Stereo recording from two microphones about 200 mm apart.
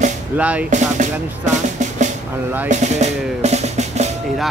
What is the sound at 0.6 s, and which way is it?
Drum, 40° right (ahead or behind).